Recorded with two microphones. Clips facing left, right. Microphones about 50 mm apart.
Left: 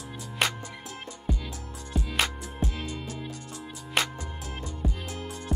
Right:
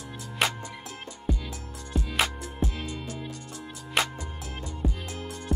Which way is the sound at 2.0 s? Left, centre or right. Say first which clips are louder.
Right 1 dB; centre.